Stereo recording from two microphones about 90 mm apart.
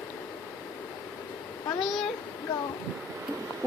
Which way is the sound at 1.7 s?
Centre (ahead or behind).